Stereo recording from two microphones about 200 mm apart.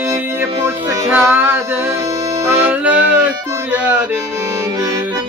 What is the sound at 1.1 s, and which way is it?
Music, 10° right (ahead or behind).